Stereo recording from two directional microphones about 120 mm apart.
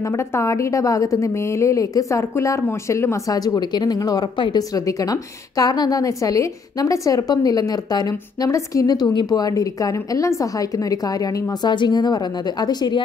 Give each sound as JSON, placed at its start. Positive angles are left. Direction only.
{"t": 0.0, "sound": "a woman's voice", "side_deg": 25}